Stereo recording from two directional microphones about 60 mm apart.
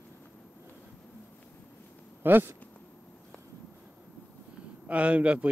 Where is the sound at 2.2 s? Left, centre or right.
Right.